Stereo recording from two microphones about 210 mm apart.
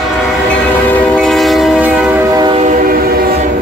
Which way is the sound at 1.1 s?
Centre (ahead or behind).